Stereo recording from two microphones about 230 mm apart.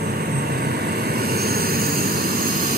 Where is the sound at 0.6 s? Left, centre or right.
Right.